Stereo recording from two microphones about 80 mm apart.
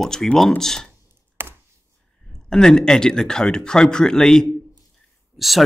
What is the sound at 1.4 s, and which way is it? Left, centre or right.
Chopping, right.